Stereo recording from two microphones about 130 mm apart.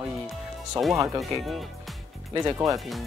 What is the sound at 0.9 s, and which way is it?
Speech, 25° right (ahead or behind).